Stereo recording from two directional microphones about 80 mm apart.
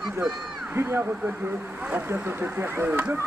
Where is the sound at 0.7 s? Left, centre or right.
Right.